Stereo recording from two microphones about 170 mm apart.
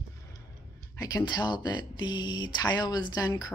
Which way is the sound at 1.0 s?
25° left (ahead or behind).